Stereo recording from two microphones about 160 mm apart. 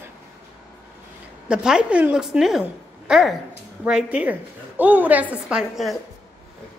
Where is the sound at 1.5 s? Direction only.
5° right (ahead or behind).